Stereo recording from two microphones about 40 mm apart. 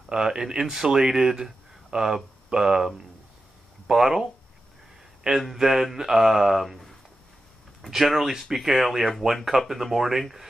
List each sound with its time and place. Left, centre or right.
0.1 s speech: centre
5.6 s speech: centre